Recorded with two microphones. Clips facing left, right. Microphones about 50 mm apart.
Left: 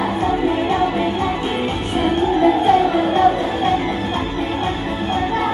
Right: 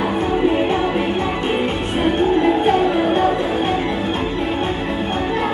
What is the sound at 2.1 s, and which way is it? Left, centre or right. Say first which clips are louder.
Music: left 1 dB; right.